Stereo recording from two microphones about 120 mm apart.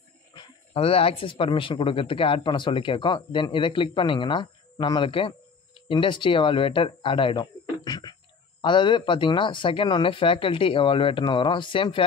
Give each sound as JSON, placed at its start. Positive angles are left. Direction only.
{"t": 0.7, "sound": "speech", "side_deg": 55}